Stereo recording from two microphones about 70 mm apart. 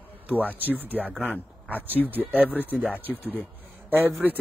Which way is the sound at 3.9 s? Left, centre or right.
Right.